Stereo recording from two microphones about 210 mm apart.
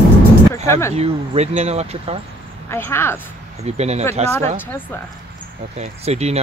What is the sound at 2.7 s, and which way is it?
Speech, 10° left (ahead or behind).